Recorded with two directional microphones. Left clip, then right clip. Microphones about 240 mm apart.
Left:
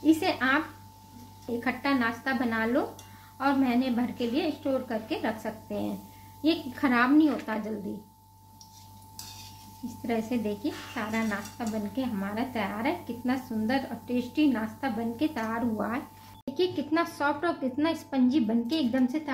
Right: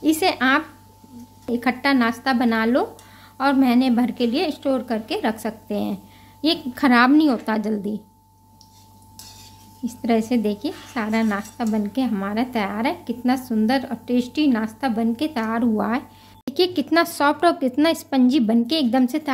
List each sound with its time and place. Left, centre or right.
0.0 s a sound: right
1.6 s a woman's voice: right
10.0 s a woman's voice: right